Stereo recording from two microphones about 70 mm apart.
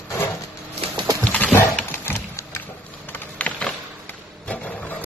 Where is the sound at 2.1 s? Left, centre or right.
Left.